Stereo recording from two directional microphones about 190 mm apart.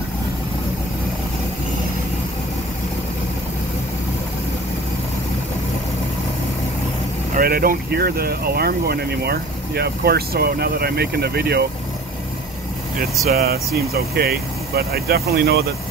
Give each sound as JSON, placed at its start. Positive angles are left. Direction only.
{"t": 7.3, "sound": "speech", "side_deg": -50}
{"t": 13.3, "sound": "speech", "side_deg": -55}